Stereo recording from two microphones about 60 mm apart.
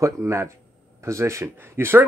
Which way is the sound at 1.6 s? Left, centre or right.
Right.